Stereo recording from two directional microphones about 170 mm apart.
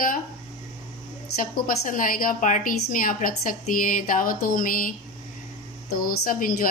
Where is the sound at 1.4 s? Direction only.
55° left (ahead or behind).